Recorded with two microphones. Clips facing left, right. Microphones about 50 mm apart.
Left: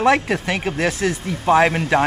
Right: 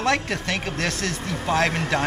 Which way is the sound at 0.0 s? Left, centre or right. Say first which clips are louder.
Left 6 dB; centre.